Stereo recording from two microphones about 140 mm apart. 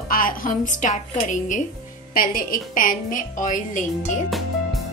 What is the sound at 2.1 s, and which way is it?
A woman's voice, 90° left.